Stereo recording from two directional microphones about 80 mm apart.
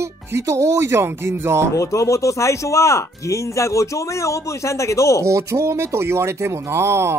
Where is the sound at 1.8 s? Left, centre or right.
Left.